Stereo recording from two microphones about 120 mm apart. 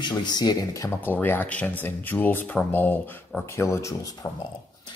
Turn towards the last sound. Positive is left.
turn(degrees=25)  # may be behind; listen again after turning